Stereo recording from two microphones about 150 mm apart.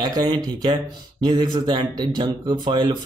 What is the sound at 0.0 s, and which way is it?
Speech, 25° right (ahead or behind).